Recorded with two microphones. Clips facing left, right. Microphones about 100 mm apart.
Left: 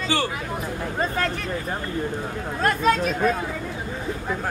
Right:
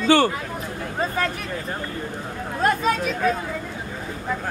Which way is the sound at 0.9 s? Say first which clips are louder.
Right 1 dB; 5° right (ahead or behind).